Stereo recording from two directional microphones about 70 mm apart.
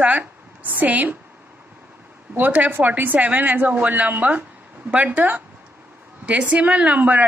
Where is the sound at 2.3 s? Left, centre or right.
Right.